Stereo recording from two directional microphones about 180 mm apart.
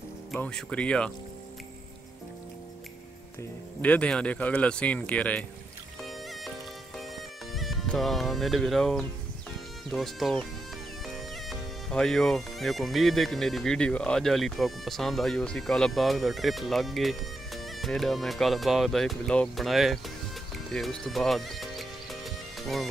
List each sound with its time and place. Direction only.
0.3 s speech: 5° left (ahead or behind)
3.8 s speech: 5° left (ahead or behind)
7.5 s speech: centre (ahead or behind)
11.4 s speech: centre (ahead or behind)
20.7 s music: 5° left (ahead or behind)